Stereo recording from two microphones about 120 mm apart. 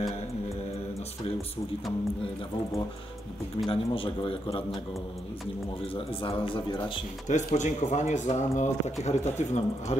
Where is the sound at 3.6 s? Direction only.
45° left (ahead or behind).